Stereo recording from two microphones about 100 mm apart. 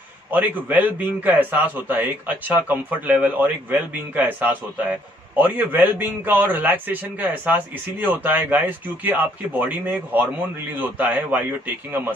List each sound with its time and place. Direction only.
0.3 s a man's voice: 15° right (ahead or behind)